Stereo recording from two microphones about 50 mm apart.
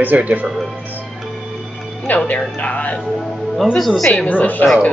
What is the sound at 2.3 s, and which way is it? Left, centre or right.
Speech, left.